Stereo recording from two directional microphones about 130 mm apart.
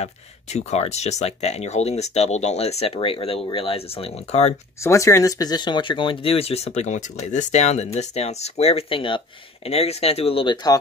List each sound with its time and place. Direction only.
0.0 s speech: 55° left (ahead or behind)
4.8 s speech: 25° left (ahead or behind); by 9.2 s 40° left (ahead or behind)
9.7 s speech: 55° left (ahead or behind); by 10.8 s 35° left (ahead or behind)